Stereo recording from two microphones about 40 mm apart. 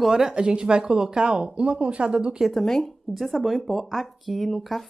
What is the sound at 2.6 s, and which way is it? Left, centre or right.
Speech, centre.